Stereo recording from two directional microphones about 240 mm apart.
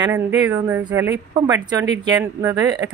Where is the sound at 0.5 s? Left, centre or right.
Centre.